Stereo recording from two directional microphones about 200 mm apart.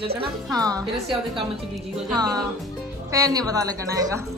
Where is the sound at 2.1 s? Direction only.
20° right (ahead or behind).